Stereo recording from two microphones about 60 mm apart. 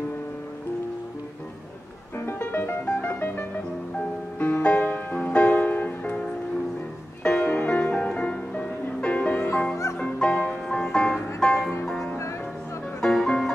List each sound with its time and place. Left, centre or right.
2.1 s music: left
7.2 s music: left; by 13.5 s centre